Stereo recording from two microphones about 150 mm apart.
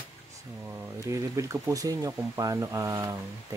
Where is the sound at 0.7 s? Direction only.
20° right (ahead or behind).